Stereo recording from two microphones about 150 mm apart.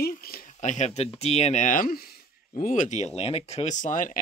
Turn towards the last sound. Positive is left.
turn(degrees=55)  # may be behind; listen again after turning